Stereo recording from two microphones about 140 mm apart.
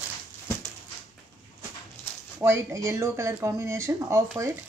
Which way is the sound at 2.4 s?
20° right (ahead or behind).